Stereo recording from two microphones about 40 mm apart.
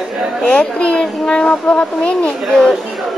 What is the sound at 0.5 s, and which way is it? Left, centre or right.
Speech, left.